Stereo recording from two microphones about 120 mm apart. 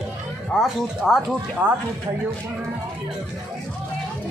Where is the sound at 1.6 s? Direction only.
40° right (ahead or behind).